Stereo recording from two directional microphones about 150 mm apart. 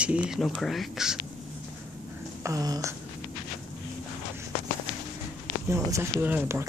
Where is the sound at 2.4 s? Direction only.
25° right (ahead or behind).